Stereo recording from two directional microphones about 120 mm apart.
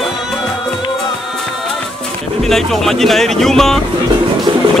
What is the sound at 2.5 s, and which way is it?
Speech, 5° left (ahead or behind).